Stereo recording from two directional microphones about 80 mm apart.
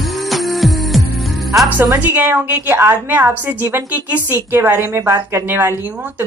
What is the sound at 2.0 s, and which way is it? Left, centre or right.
A woman's voice, right.